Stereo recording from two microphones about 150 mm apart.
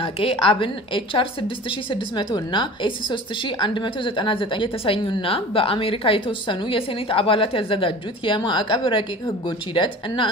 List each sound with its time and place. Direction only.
0.0 s a woman's voice: 40° left (ahead or behind)